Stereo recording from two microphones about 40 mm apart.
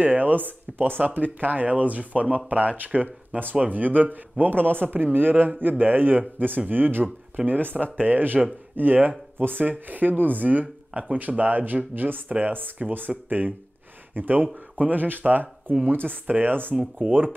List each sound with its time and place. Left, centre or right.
0.0 s speech: right